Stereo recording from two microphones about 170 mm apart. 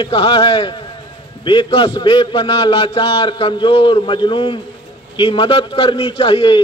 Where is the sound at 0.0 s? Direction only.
30° left (ahead or behind).